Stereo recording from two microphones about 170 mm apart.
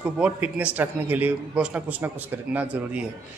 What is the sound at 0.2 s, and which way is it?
A man's voice, 10° right (ahead or behind).